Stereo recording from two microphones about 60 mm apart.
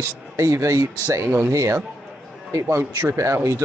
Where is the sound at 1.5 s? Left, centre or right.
Right.